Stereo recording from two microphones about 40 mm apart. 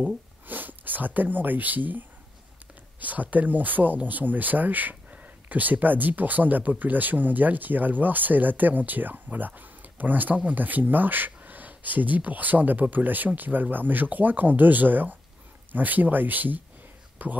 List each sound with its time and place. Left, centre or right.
0.0 s speech: right